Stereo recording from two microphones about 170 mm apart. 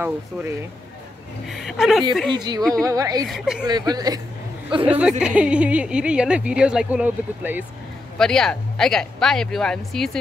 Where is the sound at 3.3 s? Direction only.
Centre (ahead or behind).